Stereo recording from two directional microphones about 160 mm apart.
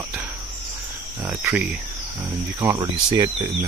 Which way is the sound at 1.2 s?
15° right (ahead or behind).